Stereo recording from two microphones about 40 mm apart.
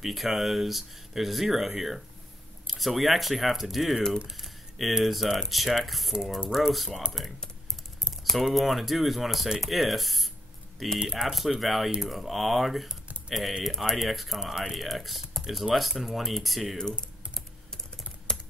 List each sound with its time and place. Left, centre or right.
0.0 s speech: centre
18.3 s typing: centre